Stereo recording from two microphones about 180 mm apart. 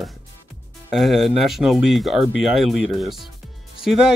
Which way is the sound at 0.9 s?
Centre (ahead or behind).